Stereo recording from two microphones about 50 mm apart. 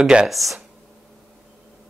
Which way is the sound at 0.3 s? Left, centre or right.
Centre.